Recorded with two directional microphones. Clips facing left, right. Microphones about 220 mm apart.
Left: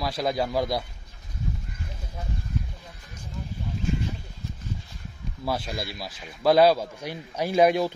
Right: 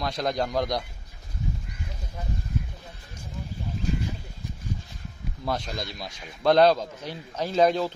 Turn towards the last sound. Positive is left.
turn(degrees=10)  # may be behind; listen again after turning